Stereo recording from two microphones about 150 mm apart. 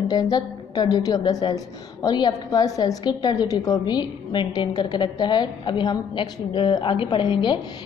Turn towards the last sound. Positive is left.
turn(degrees=30)  # may be behind; listen again after turning